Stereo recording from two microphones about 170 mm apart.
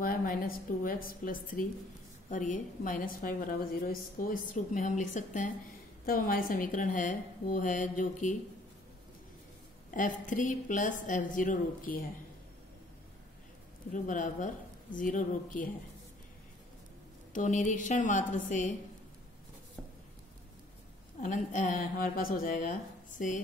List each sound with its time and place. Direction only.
0.0 s a woman's voice: 55° left (ahead or behind)
9.8 s a woman's voice: 50° left (ahead or behind)
13.9 s a woman's voice: 50° left (ahead or behind)
17.3 s a woman's voice: 45° left (ahead or behind)
21.2 s a woman's voice: 50° left (ahead or behind)